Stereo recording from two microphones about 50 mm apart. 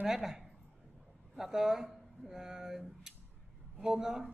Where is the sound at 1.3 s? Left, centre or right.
Centre.